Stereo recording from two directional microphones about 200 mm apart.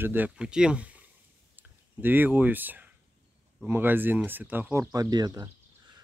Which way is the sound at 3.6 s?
10° right (ahead or behind).